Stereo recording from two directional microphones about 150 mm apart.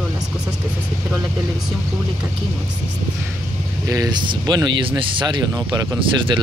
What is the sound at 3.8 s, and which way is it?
Speech, 25° right (ahead or behind).